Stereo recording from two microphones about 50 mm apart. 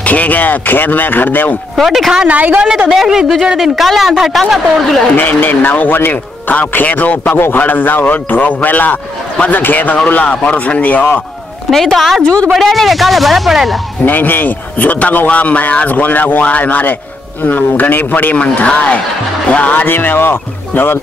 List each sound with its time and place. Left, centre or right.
0.0 s speech: left
1.8 s speech: centre
2.2 s a woman's voice: right
2.9 s a man's voice: centre
5.1 s speech: left
10.2 s speech: left
11.7 s speech: centre
14.0 s speech: left
18.3 s speech: left